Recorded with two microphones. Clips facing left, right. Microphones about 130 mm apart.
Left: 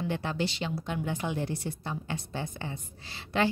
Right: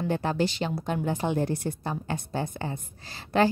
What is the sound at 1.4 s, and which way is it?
A woman's voice, 50° right (ahead or behind).